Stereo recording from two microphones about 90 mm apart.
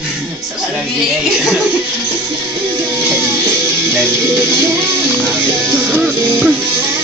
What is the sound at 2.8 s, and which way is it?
Music, 25° right (ahead or behind).